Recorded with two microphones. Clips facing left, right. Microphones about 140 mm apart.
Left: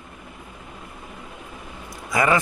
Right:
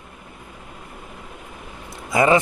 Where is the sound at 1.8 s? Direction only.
25° right (ahead or behind).